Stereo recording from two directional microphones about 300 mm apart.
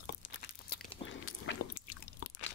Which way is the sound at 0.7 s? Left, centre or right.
Left.